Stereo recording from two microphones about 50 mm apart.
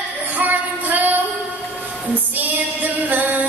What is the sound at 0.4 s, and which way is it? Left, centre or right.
Music, right.